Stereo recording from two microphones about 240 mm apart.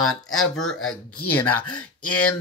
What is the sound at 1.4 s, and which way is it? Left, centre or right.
Speech, left.